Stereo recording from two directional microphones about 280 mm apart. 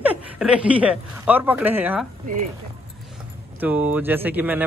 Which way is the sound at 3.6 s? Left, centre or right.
Centre.